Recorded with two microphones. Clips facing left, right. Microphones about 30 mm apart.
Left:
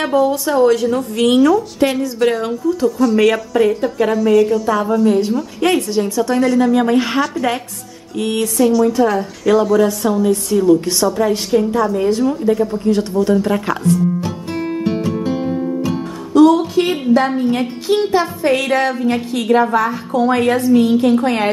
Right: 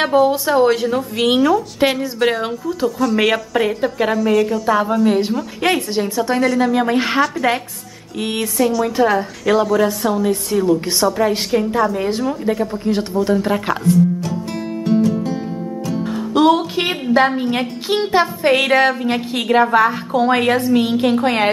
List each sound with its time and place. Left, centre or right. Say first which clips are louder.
0.0 s a woman's voice: right 1 dB; right; by 4.6 s centre
4.6 s a woman's voice: left 1 dB; centre
6.4 s speech: left 2 dB; centre
6.7 s a woman's voice: left 2 dB; centre
8.5 s speech: left 3 dB; centre
8.8 s a woman's voice: left 2 dB; right
9.1 s a woman's voice: left 1 dB; centre
16.3 s music: left 4 dB; right
17.4 s a woman's voice: left 2 dB; right